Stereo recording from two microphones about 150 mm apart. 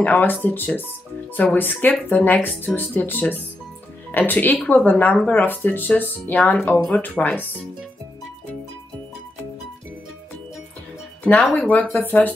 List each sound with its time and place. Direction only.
0.0 s speech: 10° left (ahead or behind)
11.7 s speech: 10° left (ahead or behind)